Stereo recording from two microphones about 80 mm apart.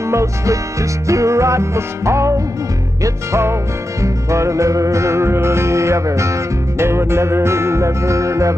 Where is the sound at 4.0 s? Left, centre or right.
Right.